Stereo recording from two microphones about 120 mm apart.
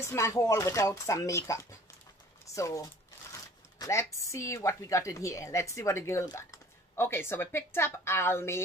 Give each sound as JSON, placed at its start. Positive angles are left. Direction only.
{"t": 0.0, "sound": "speech", "side_deg": 25}
{"t": 2.5, "sound": "shuffling cards", "side_deg": 25}
{"t": 3.8, "sound": "speech", "side_deg": 25}